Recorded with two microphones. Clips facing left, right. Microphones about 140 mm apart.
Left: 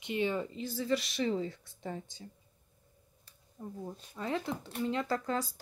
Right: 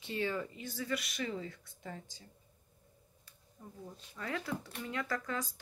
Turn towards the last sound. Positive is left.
turn(degrees=30)  # may be behind; listen again after turning